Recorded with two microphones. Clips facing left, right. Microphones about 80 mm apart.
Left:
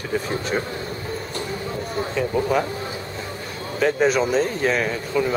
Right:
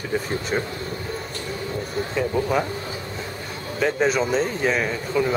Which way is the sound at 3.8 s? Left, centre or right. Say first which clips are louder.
Left 2 dB; centre.